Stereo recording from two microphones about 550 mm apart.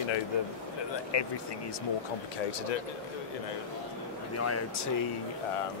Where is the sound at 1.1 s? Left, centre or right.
Left.